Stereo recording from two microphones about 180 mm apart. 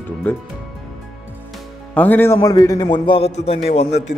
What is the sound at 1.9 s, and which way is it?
A man's voice, 10° left (ahead or behind).